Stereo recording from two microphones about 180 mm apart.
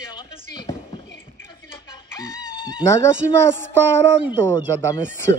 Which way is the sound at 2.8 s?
15° left (ahead or behind).